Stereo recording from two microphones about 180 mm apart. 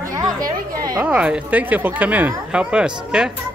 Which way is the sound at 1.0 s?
5° right (ahead or behind).